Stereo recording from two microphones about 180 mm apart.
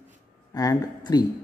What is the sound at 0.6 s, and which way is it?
Speech, 20° left (ahead or behind).